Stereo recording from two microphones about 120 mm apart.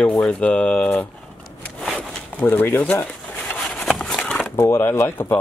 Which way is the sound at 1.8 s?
Centre (ahead or behind).